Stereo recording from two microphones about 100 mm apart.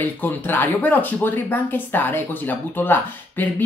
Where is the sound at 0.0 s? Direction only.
20° left (ahead or behind).